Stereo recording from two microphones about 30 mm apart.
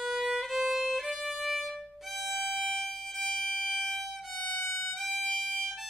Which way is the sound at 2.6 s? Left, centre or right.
Centre.